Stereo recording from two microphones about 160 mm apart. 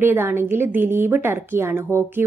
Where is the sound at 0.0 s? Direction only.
15° right (ahead or behind).